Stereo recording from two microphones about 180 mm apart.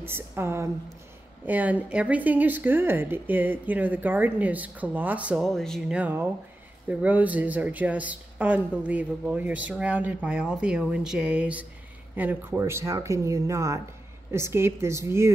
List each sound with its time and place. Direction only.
0.0 s a woman's voice: 15° right (ahead or behind)